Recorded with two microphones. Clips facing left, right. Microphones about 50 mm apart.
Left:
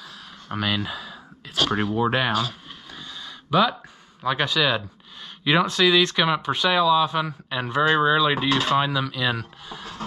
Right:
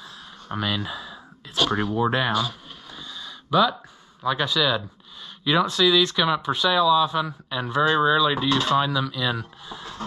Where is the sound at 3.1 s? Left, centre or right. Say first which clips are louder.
Even; left.